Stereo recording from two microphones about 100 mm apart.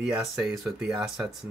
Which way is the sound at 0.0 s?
5° right (ahead or behind).